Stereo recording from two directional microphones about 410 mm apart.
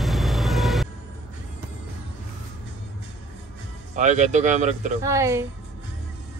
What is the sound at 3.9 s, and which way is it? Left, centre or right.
Speech, centre.